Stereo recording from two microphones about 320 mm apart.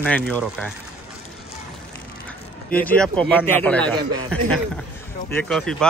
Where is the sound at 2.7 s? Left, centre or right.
Centre.